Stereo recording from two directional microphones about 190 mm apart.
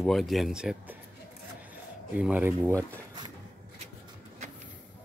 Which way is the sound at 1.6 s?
5° right (ahead or behind).